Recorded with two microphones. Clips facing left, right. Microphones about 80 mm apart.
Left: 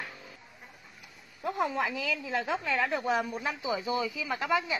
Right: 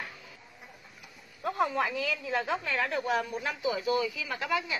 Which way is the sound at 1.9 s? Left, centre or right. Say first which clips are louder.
Right 1 dB; centre.